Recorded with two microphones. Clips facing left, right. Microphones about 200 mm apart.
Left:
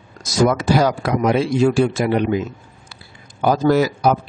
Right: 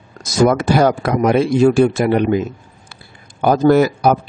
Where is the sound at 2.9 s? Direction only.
55° right (ahead or behind).